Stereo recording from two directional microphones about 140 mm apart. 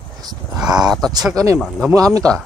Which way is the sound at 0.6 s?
5° right (ahead or behind).